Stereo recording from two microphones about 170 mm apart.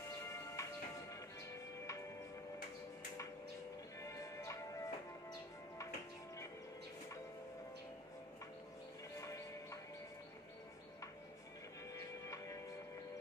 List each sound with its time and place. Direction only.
0.6 s music: 20° left (ahead or behind)
4.0 s music: 20° left (ahead or behind)
9.2 s music: 20° left (ahead or behind)
11.9 s music: 20° left (ahead or behind)